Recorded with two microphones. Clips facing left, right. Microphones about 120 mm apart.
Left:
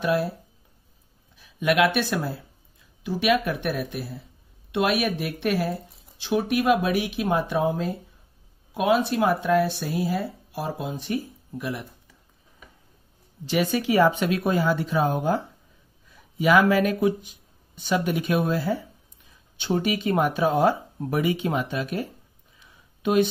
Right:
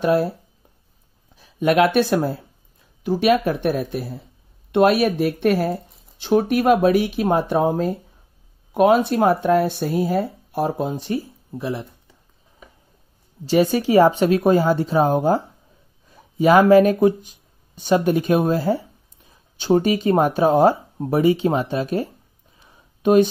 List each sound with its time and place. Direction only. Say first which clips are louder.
0.0 s speech: right 5 dB; 45° right (ahead or behind)
1.3 s speech: right 5 dB; 40° right (ahead or behind)
13.5 s speech: right 6 dB; 40° right (ahead or behind)
22.6 s a sound: right 7 dB; 40° right (ahead or behind)